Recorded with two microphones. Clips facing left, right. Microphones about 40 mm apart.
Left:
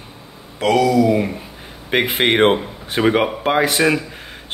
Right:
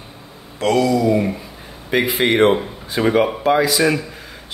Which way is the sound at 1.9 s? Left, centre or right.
Left.